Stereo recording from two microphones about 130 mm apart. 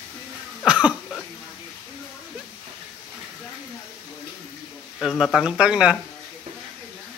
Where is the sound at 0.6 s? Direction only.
10° right (ahead or behind).